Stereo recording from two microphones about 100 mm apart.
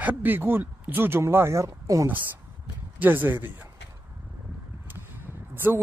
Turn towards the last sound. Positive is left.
turn(degrees=-20)  # may be behind; listen again after turning